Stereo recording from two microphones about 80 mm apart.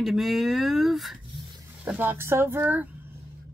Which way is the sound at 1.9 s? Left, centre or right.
Right.